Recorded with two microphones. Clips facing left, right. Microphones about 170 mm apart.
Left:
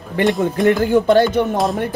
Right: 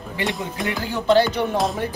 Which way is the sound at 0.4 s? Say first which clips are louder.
Left 11 dB; 50° left (ahead or behind).